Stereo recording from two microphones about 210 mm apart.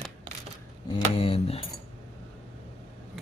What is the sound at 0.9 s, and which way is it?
Speech, 25° left (ahead or behind).